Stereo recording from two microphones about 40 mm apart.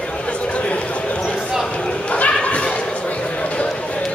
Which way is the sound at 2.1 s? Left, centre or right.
Left.